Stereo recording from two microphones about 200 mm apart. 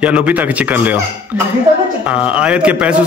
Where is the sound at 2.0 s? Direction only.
5° right (ahead or behind).